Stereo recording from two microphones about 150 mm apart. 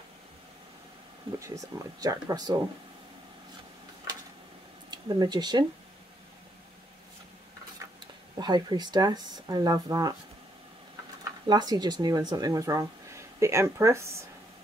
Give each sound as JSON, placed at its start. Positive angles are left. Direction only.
{"t": 1.4, "sound": "speech", "side_deg": -20}
{"t": 4.9, "sound": "speech", "side_deg": -30}
{"t": 8.4, "sound": "speech", "side_deg": -30}
{"t": 11.4, "sound": "speech", "side_deg": -30}